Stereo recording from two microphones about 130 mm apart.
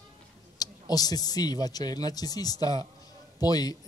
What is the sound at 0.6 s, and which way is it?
Speech, 30° left (ahead or behind).